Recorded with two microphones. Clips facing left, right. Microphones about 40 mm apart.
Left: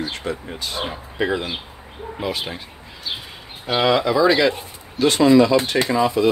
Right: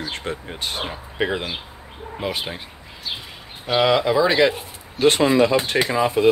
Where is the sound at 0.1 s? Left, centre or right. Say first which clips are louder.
Left 1 dB; right.